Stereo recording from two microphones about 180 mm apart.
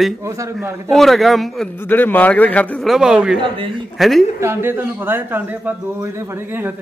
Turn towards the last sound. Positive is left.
turn(degrees=-10)  # may be behind; listen again after turning